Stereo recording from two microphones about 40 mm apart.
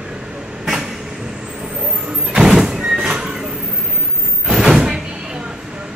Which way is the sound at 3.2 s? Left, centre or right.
Centre.